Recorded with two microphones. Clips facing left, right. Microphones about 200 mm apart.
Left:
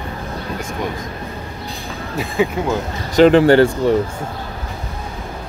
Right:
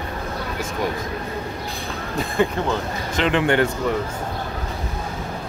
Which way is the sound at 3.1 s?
35° left (ahead or behind).